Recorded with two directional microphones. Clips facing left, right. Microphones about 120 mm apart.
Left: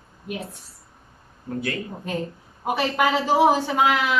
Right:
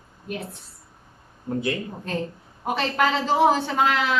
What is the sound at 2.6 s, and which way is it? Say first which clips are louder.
A man's voice: left 1 dB; 10° left (ahead or behind).